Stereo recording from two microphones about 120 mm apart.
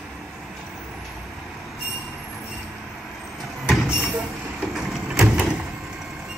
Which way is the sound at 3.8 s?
5° right (ahead or behind).